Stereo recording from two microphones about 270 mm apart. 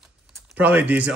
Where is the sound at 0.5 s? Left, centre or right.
Centre.